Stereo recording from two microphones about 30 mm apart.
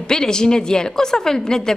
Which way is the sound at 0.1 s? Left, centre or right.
Left.